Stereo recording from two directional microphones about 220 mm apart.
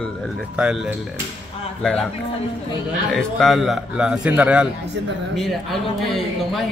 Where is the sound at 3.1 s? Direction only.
Centre (ahead or behind).